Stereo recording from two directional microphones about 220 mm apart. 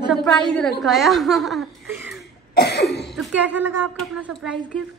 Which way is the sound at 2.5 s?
45° left (ahead or behind).